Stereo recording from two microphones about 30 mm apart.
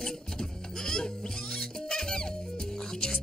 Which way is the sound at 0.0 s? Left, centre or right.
Left.